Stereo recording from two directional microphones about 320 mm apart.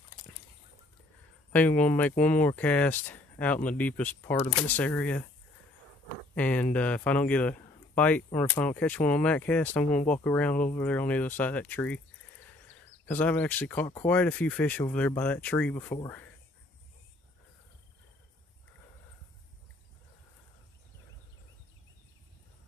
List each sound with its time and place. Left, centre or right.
1.5 s speech: centre
6.3 s speech: centre